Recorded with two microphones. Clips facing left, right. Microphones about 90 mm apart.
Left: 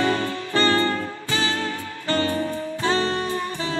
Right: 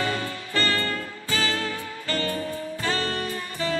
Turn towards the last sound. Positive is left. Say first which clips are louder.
# left 2 dB
turn(degrees=25)  # may be behind; listen again after turning